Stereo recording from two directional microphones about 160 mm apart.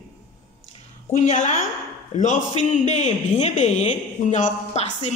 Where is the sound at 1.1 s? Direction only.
50° left (ahead or behind).